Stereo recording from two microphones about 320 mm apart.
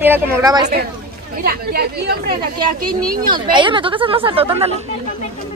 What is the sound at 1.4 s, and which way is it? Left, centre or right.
Speech, right.